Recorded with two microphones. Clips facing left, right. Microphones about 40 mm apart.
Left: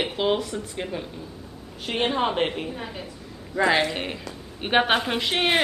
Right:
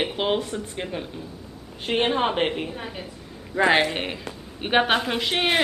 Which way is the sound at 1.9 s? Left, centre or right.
Right.